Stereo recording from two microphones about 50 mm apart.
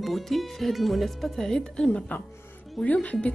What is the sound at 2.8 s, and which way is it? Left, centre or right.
Speech, left.